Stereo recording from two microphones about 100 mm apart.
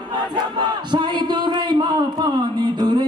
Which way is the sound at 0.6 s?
50° right (ahead or behind).